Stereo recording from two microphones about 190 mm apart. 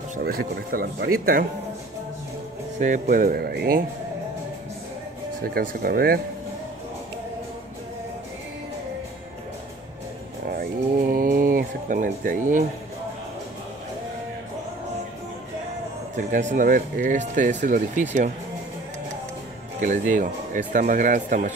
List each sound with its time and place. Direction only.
0.1 s speech: 50° right (ahead or behind)
2.8 s speech: 45° right (ahead or behind)
5.4 s speech: 50° right (ahead or behind)
10.5 s speech: 50° right (ahead or behind)
16.2 s speech: 45° right (ahead or behind)
19.8 s speech: 45° right (ahead or behind)